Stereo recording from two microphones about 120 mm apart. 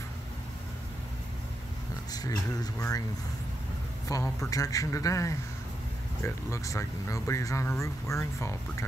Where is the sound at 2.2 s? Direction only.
30° left (ahead or behind).